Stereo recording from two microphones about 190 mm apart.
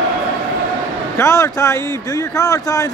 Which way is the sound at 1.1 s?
15° left (ahead or behind).